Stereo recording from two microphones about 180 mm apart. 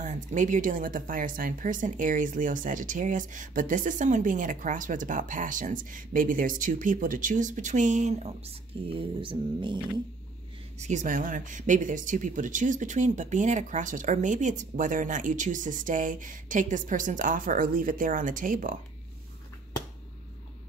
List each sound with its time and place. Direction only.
0.0 s speech: 45° right (ahead or behind)
8.9 s mantra: 30° right (ahead or behind)
10.8 s speech: 40° right (ahead or behind)